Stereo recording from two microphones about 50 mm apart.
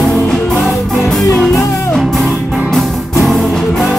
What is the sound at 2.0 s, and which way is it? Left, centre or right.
Music, centre.